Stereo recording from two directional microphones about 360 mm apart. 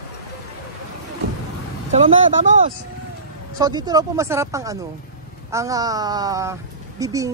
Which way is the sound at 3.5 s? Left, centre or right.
Centre.